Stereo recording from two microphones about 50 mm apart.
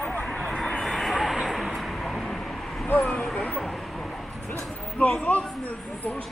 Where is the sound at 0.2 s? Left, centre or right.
Centre.